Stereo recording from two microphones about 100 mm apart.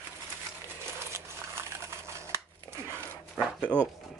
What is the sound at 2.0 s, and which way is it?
Scissors, 30° right (ahead or behind).